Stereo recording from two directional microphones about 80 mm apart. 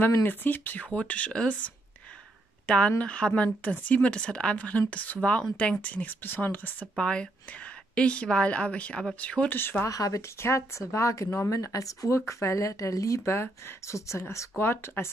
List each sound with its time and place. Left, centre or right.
0.0 s a woman's voice: left
9.6 s speech: left
9.8 s speech: left